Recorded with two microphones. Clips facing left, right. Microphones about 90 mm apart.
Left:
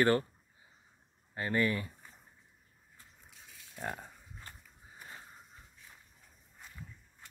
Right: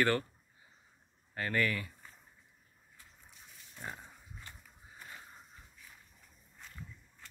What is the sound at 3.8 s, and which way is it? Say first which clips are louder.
Pig: left 5 dB; 50° left (ahead or behind).